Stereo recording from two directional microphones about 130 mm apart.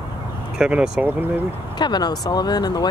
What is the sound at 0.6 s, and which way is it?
Speech, 10° right (ahead or behind).